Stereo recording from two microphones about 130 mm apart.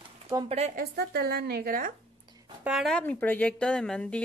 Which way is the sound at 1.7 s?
90° right.